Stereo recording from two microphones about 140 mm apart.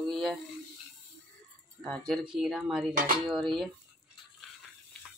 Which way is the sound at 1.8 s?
5° left (ahead or behind).